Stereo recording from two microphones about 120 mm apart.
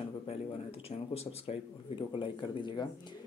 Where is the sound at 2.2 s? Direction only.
40° left (ahead or behind).